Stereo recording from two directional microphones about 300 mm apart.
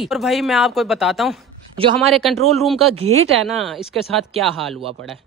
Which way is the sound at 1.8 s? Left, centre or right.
Centre.